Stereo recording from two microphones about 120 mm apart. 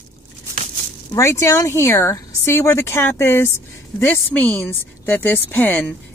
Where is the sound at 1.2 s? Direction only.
25° left (ahead or behind).